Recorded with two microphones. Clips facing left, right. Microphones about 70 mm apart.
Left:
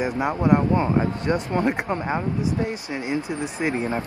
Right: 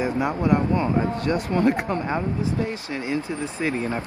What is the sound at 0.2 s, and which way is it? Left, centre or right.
Speech, left.